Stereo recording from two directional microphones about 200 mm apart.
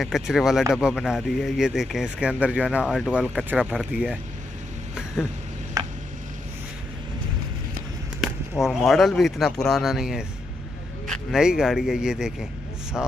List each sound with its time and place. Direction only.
0.0 s speech: centre (ahead or behind)
5.8 s a sound: 20° right (ahead or behind)
8.2 s speech: centre (ahead or behind)